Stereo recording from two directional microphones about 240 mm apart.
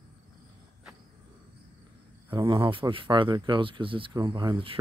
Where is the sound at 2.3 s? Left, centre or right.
Right.